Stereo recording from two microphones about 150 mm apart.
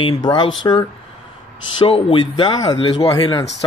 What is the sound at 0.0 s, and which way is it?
Speech, 25° left (ahead or behind).